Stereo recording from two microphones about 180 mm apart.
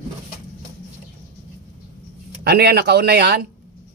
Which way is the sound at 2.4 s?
65° right (ahead or behind).